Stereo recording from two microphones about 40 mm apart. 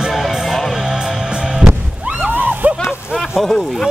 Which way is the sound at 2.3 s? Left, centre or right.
Right.